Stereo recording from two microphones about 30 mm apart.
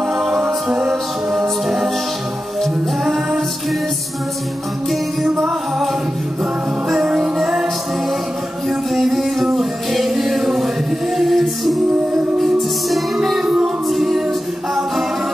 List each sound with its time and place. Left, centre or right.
0.0 s music: centre
3.0 s music: centre
7.2 s music: centre
8.6 s music: centre
12.9 s music: centre
13.8 s a capella: centre